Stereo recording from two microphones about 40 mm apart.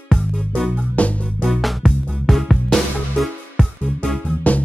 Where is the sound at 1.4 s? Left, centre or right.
Centre.